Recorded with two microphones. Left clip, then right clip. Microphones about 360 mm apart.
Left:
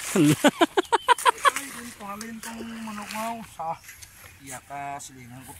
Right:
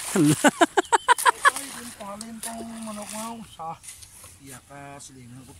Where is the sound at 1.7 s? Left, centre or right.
Centre.